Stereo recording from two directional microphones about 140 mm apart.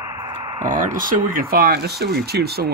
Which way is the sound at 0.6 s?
65° right (ahead or behind).